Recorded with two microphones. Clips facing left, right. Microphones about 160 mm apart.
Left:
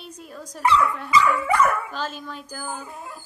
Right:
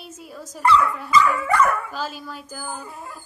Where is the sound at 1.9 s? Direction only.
5° right (ahead or behind).